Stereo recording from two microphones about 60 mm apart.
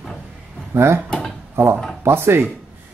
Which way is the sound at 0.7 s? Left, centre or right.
Right.